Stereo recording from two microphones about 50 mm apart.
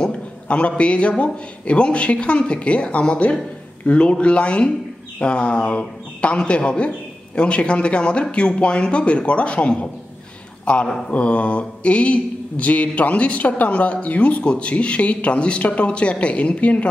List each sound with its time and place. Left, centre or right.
0.0 s mantra: left
10.6 s a sound: left
11.1 s mantra: left